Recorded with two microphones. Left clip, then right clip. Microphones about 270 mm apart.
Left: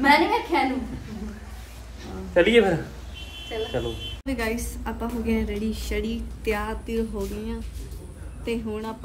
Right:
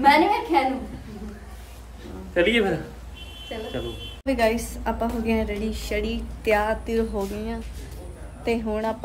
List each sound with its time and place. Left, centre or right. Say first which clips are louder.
0.0 s a sound: right 2 dB; centre
2.3 s a woman's voice: left 3 dB; centre
3.5 s a woman's voice: left 4 dB; centre
4.3 s a woman's voice: right 7 dB; centre